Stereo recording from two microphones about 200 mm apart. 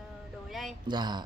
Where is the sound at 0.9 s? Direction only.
20° right (ahead or behind).